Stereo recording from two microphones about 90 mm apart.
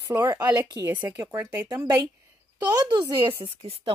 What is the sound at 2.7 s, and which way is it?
Speech, 50° right (ahead or behind).